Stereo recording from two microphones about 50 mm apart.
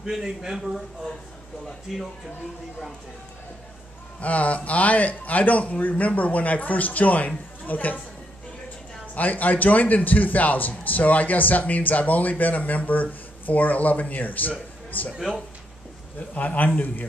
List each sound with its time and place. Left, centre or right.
0.0 s a man's voice: centre
1.9 s speech: centre
4.2 s a man's voice: left
9.1 s a man's voice: left
16.3 s a man's voice: left